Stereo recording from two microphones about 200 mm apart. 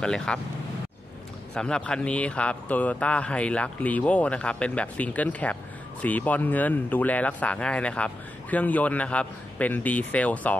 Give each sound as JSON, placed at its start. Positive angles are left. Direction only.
{"t": 0.0, "sound": "speech", "side_deg": 5}
{"t": 1.5, "sound": "speech", "side_deg": 5}